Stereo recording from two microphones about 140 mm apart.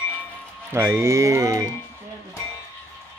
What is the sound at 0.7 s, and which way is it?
Music, 20° right (ahead or behind).